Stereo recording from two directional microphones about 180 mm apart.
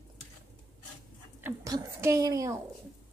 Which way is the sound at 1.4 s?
20° right (ahead or behind).